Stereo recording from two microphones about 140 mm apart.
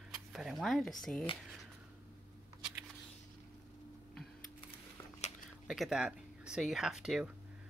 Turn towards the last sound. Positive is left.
turn(degrees=-5)  # may be behind; listen again after turning